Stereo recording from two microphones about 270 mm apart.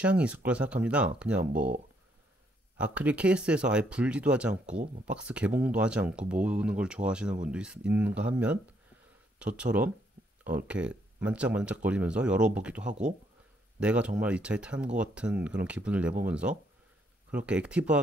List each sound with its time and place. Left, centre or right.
0.0 s speech: centre
1.4 s speech: right
2.8 s speech: centre